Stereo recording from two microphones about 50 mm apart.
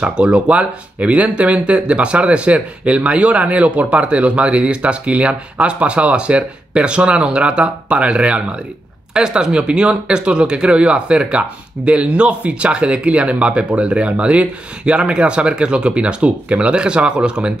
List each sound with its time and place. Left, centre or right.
0.0 s speech: right